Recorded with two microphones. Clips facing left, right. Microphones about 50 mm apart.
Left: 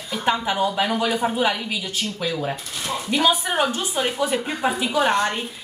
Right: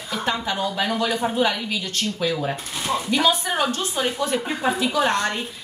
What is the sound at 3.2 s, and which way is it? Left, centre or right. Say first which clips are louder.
A woman's voice: left 3 dB; centre.